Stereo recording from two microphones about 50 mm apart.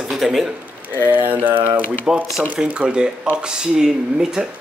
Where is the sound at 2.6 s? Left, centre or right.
Right.